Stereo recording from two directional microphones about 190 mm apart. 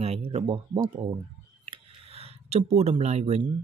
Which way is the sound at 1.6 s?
30° right (ahead or behind).